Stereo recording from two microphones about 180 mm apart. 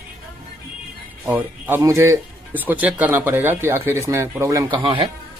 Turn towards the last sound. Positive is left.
turn(degrees=-25)  # may be behind; listen again after turning